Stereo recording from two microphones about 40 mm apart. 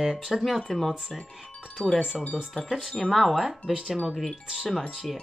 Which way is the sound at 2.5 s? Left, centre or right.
Centre.